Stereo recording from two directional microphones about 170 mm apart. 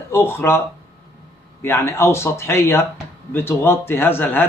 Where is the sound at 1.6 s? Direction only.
15° left (ahead or behind).